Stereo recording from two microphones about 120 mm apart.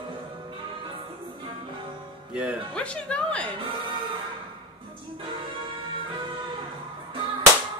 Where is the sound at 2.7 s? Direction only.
10° left (ahead or behind).